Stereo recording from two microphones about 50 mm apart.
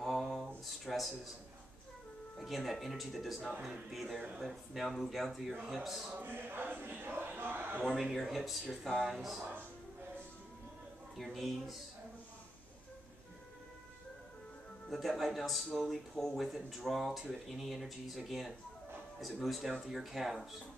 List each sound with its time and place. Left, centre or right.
0.0 s a sound: centre
0.7 s speech: centre
2.3 s speech: centre
6.1 s speech: right
7.8 s speech: centre
11.1 s speech: centre
14.9 s speech: centre